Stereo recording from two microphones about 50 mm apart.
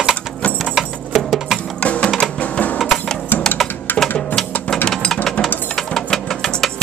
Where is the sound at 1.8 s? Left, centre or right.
Left.